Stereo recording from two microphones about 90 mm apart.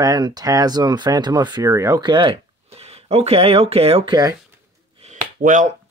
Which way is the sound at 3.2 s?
90° right.